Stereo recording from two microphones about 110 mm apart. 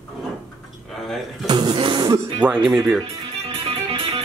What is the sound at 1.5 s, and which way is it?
Speech, 40° right (ahead or behind).